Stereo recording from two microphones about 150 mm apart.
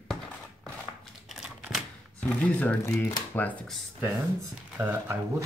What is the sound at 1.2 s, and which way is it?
Typewriter, 5° right (ahead or behind).